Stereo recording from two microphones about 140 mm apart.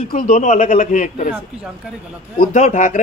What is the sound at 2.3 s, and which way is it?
Speech, 60° left (ahead or behind).